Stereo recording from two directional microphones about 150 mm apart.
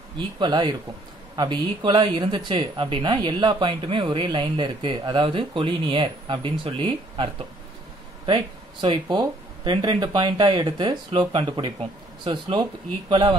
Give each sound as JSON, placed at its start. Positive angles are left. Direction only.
{"t": 0.4, "sound": "speech", "side_deg": -30}
{"t": 8.8, "sound": "speech", "side_deg": -30}